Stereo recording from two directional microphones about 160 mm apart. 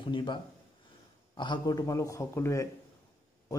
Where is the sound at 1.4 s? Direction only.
25° left (ahead or behind).